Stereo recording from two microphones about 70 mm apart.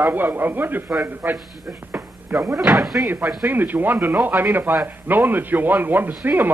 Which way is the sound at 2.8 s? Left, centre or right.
Centre.